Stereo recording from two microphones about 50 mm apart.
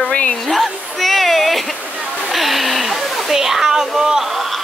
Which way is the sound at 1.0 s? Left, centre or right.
Centre.